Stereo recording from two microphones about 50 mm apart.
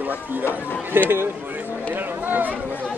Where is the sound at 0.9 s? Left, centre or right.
Right.